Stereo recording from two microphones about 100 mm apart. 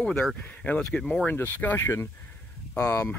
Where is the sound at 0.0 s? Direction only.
10° left (ahead or behind).